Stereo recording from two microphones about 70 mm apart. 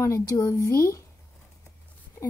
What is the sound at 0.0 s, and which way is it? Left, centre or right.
Speech, left.